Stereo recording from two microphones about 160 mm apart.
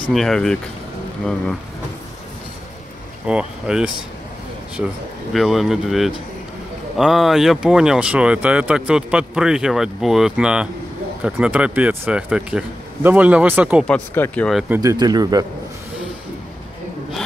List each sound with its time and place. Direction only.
0.1 s speech: centre (ahead or behind)
3.3 s speech: 5° right (ahead or behind)
13.8 s speech: 10° left (ahead or behind)
14.8 s speech: 25° right (ahead or behind)